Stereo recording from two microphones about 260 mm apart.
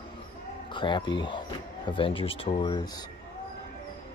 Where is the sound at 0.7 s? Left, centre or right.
Centre.